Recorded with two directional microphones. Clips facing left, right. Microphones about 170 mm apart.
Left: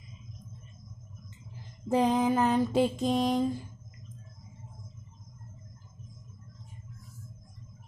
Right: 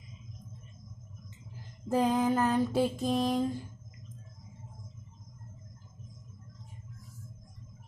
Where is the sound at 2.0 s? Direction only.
15° left (ahead or behind).